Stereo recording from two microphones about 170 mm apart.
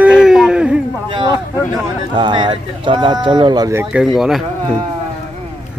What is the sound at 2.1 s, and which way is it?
Speech, 25° right (ahead or behind).